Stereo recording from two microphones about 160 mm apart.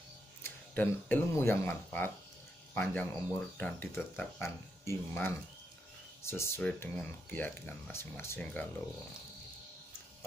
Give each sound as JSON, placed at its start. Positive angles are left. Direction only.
{"t": 0.4, "sound": "speech", "side_deg": 10}